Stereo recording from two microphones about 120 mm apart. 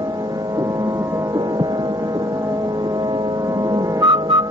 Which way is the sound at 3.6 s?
35° right (ahead or behind).